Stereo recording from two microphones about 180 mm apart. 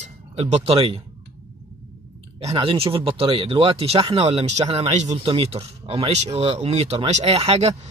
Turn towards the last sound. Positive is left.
turn(degrees=-35)  # may be behind; listen again after turning